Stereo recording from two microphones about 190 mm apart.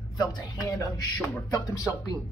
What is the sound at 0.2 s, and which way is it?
Speech, 20° left (ahead or behind).